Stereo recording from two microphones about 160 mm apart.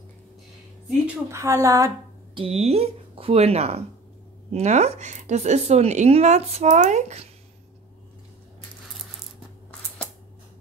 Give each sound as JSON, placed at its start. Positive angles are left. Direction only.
{"t": 1.3, "sound": "a woman's voice", "side_deg": -20}
{"t": 2.3, "sound": "speech", "side_deg": -40}